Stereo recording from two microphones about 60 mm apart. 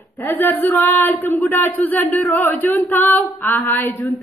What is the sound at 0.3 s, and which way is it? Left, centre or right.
Female singing, left.